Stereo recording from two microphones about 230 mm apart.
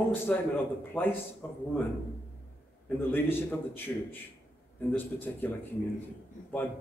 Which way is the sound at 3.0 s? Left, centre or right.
Centre.